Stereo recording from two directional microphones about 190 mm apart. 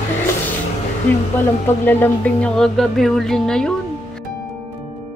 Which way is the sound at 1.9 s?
10° left (ahead or behind).